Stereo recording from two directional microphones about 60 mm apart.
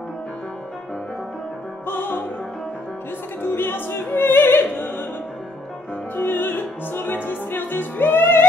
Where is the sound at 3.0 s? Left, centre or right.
Left.